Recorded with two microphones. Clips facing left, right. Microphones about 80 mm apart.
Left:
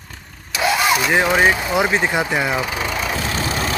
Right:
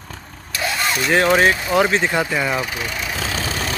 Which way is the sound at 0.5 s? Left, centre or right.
Centre.